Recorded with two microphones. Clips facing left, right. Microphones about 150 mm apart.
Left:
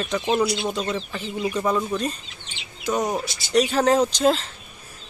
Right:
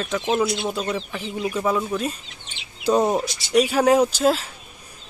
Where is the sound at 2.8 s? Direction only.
30° right (ahead or behind).